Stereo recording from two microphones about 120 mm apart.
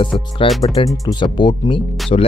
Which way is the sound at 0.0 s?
45° left (ahead or behind).